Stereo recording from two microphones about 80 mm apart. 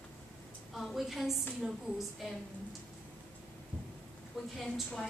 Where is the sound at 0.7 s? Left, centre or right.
Centre.